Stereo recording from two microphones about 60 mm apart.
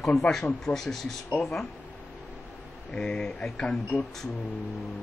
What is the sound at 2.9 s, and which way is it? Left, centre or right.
Speech, centre.